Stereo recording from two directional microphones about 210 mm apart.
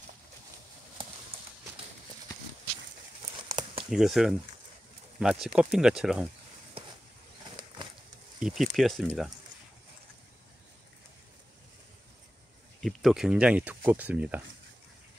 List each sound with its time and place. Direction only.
3.4 s a sound: 20° right (ahead or behind)
3.9 s speech: centre (ahead or behind)
7.5 s bird: 25° right (ahead or behind)
8.4 s speech: 5° right (ahead or behind)
12.8 s speech: centre (ahead or behind)